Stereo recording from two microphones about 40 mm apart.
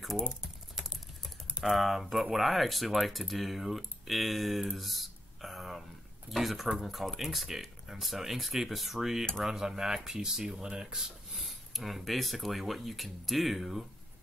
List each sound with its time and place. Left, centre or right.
0.2 s speech: centre
0.7 s typing: centre
1.6 s speech: centre
11.3 s speech: centre